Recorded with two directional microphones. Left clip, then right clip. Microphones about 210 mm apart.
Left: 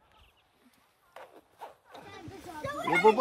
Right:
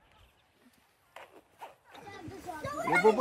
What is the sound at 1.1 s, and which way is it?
Zipper, 45° left (ahead or behind).